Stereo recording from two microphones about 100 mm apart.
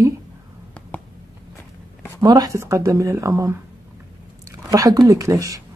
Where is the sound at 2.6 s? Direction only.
30° right (ahead or behind).